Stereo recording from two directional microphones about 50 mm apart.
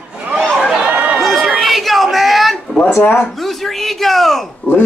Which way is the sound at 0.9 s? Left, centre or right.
Right.